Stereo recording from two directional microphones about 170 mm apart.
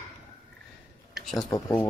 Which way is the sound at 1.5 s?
20° left (ahead or behind).